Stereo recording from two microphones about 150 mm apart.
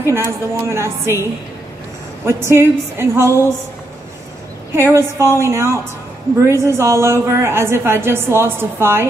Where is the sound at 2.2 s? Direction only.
15° right (ahead or behind).